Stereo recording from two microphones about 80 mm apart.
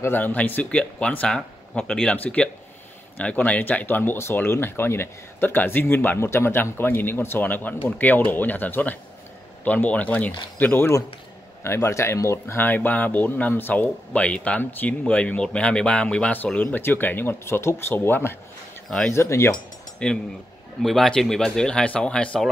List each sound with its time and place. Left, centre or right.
0.0 s speech: left
20.0 s speech: centre